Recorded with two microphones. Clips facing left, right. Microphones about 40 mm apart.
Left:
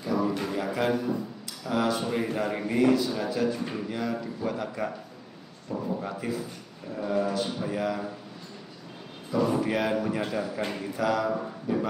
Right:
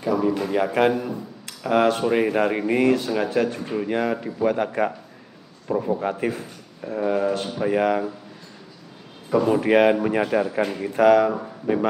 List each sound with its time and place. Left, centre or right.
0.0 s a sound: right
0.5 s speech: right
9.4 s speech: right